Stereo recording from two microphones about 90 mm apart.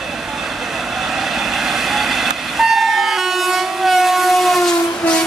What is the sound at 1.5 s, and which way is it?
Vehicle, centre (ahead or behind).